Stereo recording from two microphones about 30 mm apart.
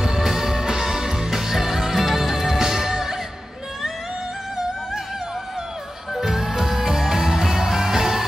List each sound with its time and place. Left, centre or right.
0.0 s music: centre
4.6 s music: centre
6.1 s music: centre